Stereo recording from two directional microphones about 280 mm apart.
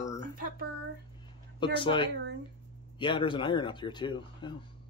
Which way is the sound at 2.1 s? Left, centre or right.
Right.